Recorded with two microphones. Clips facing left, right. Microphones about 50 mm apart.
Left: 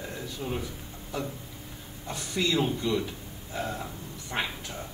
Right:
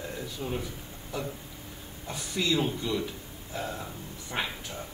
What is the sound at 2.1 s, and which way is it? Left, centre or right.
A man's voice, centre.